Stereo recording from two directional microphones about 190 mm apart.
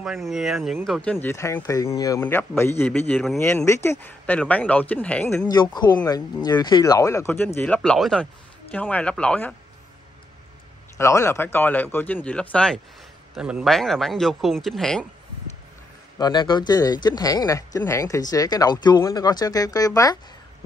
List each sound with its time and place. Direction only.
0.0 s speech: centre (ahead or behind)
1.2 s a man's voice: 15° left (ahead or behind)
11.0 s a man's voice: 15° left (ahead or behind)
16.2 s speech: 20° left (ahead or behind)